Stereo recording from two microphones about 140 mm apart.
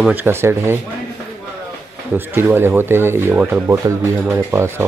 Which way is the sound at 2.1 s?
15° right (ahead or behind).